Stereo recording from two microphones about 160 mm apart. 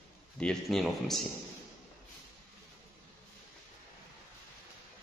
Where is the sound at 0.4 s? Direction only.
5° left (ahead or behind).